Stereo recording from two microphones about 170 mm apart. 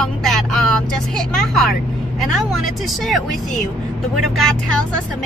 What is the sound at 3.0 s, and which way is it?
Speech, centre (ahead or behind).